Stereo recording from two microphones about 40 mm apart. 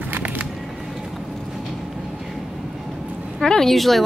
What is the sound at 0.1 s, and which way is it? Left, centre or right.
Music, right.